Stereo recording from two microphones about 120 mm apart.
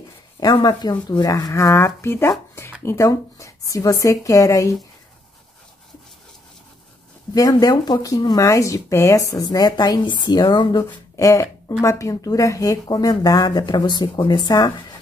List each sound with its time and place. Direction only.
0.4 s speech: 30° left (ahead or behind)
7.3 s speech: 30° left (ahead or behind)
11.1 s speech: 30° left (ahead or behind)